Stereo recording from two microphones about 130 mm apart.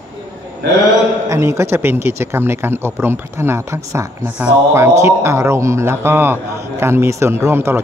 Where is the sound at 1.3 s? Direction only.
20° right (ahead or behind).